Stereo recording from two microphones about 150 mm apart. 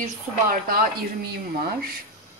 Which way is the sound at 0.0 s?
70° right (ahead or behind).